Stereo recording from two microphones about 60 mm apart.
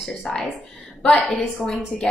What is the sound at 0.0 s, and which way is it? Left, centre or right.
Speech, centre.